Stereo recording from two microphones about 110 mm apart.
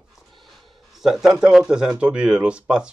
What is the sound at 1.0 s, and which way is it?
Speech, 5° right (ahead or behind).